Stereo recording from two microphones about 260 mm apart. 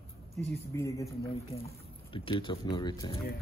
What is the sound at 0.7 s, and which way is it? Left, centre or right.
Speech, centre.